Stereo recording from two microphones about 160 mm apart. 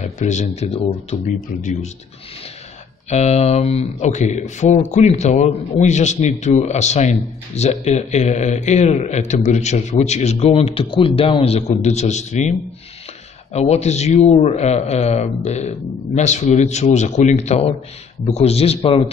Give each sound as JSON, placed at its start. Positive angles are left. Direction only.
{"t": 0.0, "sound": "a man's voice", "side_deg": 45}
{"t": 1.2, "sound": "speech", "side_deg": 50}
{"t": 3.1, "sound": "a man's voice", "side_deg": 45}